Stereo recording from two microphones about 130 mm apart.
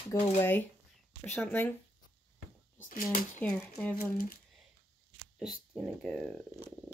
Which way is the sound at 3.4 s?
15° left (ahead or behind).